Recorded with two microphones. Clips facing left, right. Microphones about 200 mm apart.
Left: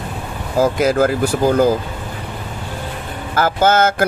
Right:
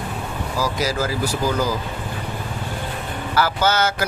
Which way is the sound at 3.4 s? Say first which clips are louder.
Left 5 dB; 50° left (ahead or behind).